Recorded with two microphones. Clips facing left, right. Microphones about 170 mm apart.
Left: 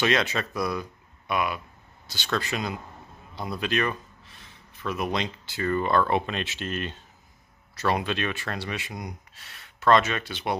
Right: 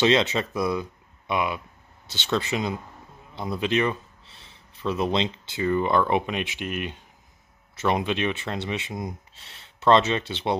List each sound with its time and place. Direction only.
0.0 s speech: 20° right (ahead or behind)